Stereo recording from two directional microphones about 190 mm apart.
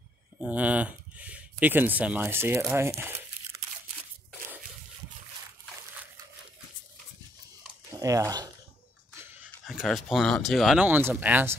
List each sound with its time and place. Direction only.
0.4 s speech: 5° right (ahead or behind)
8.0 s speech: 15° right (ahead or behind)
9.7 s speech: centre (ahead or behind)